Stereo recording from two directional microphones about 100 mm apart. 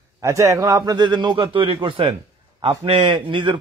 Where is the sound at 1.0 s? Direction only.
50° right (ahead or behind).